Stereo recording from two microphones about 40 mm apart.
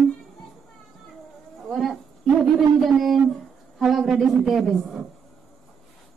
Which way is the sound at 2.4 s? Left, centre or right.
Centre.